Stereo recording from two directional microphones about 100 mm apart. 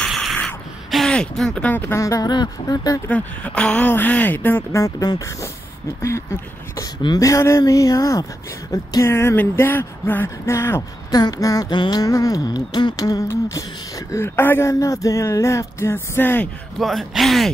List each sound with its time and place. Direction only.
0.0 s a sound: centre (ahead or behind)
0.9 s speech: 5° left (ahead or behind)
1.9 s humming: 30° left (ahead or behind)
2.2 s speech: 45° left (ahead or behind)
3.1 s speech: 15° left (ahead or behind)
4.8 s humming: 35° left (ahead or behind)
7.2 s humming: 35° left (ahead or behind)
8.7 s a sound: 30° left (ahead or behind)
11.1 s humming: 40° left (ahead or behind); by 16.4 s 20° left (ahead or behind)
16.7 s speech: centre (ahead or behind)